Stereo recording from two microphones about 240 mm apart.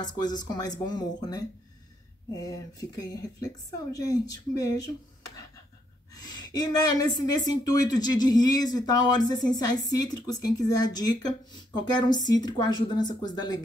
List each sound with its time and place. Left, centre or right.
0.0 s a woman's voice: centre
2.4 s a woman's voice: centre
6.1 s a woman's voice: centre